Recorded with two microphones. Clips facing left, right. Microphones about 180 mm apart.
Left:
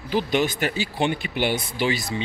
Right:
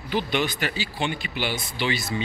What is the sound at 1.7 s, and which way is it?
Speech, 40° left (ahead or behind).